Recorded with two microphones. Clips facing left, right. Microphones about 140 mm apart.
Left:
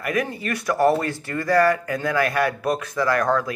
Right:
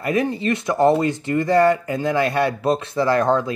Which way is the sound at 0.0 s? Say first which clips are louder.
Right 4 dB; 25° right (ahead or behind).